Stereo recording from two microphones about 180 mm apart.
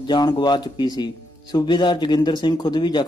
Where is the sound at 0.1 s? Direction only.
25° left (ahead or behind).